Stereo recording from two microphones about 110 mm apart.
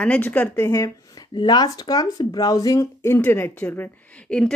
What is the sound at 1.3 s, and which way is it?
Speech, 40° left (ahead or behind).